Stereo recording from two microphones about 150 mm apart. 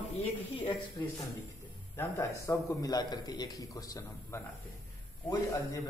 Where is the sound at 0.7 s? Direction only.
30° left (ahead or behind).